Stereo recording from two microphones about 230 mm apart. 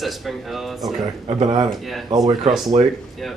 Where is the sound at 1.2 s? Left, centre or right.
Right.